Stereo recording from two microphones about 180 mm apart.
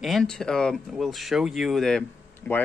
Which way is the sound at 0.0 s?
Centre (ahead or behind).